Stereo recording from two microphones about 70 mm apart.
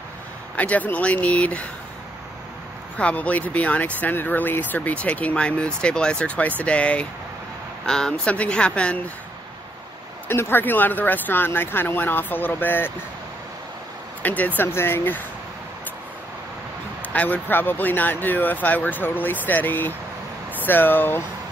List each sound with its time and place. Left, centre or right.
0.6 s speech: left
3.0 s speech: centre
10.2 s speech: left
14.2 s speech: left
14.6 s speech: left
17.1 s speech: left